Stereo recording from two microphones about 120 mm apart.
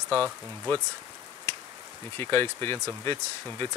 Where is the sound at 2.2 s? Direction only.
20° left (ahead or behind).